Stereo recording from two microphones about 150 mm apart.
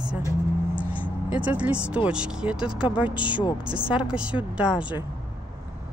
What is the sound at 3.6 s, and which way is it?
Speech, 30° right (ahead or behind).